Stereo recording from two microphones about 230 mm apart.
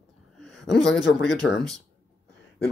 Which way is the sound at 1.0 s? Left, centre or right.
Left.